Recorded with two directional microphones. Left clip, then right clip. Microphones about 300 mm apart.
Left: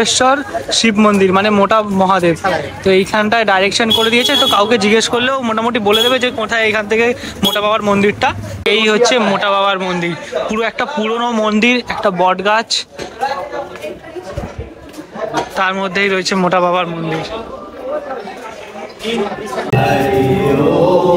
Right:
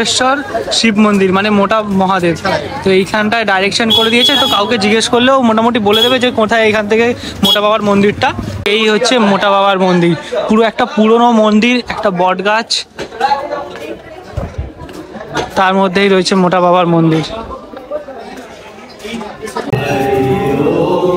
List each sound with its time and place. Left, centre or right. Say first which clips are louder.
0.0 s speech: even; centre
15.5 s speech: right 7 dB; centre
20.4 s chant: left 1 dB; centre